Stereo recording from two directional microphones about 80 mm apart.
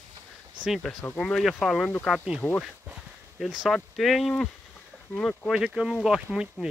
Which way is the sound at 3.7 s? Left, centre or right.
Centre.